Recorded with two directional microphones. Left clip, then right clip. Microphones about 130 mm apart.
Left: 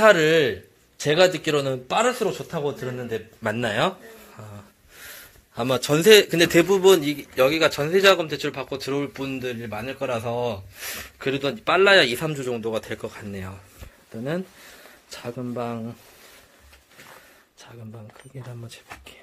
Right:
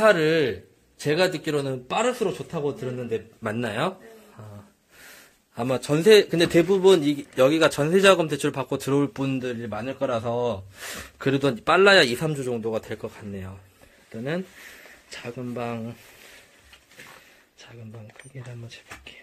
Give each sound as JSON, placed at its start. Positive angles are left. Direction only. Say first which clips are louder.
{"t": 0.0, "sound": "a man's voice", "louder": "left 3 dB", "side_deg": 0}
{"t": 5.5, "sound": "a man's voice", "louder": "left 3 dB", "side_deg": -5}
{"t": 6.9, "sound": "a man's voice", "louder": "right 1 dB", "side_deg": -35}
{"t": 7.3, "sound": "speech", "louder": "even", "side_deg": -55}
{"t": 9.6, "sound": "a man's voice", "louder": "right 1 dB", "side_deg": -50}
{"t": 12.3, "sound": "a man's voice", "louder": "even", "side_deg": -25}
{"t": 13.1, "sound": "speech", "louder": "left 3 dB", "side_deg": 10}
{"t": 15.0, "sound": "speech", "louder": "left 2 dB", "side_deg": 25}
{"t": 17.6, "sound": "speech", "louder": "left 2 dB", "side_deg": 25}